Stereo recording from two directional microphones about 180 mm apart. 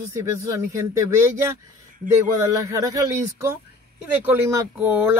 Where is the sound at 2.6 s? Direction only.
15° right (ahead or behind).